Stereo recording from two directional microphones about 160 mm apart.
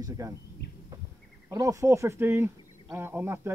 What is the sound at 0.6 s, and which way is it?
Bird, 90° left.